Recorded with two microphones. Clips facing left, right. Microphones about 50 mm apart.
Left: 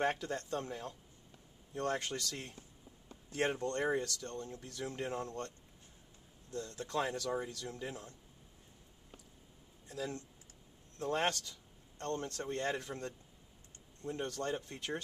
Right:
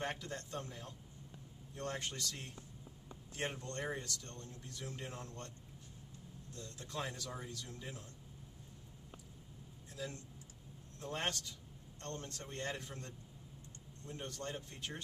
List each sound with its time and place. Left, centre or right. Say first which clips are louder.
0.0 s a man's voice: left 7 dB; left
1.8 s a man's voice: left 6 dB; left
3.5 s a man's voice: left 8 dB; left
4.4 s speech: left 8 dB; left
4.6 s a man's voice: left 6 dB; left
6.5 s a man's voice: left 8 dB; left
7.3 s a man's voice: left 8 dB; left
11.0 s a man's voice: left 6 dB; left